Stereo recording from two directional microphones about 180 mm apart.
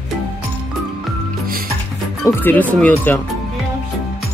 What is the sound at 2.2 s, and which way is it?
Speech, 10° left (ahead or behind).